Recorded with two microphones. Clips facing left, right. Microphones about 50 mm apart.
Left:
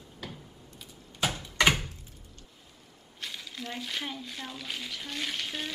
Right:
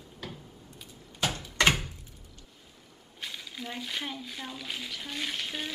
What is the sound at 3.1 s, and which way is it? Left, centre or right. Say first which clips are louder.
Speech: even; centre.